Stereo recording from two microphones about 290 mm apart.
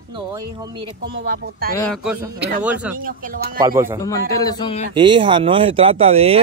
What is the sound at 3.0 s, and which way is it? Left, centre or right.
Speech, right.